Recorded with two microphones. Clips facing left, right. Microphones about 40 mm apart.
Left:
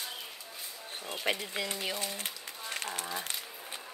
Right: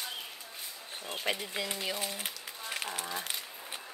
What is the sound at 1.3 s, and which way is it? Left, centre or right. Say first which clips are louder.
Speech: even; centre.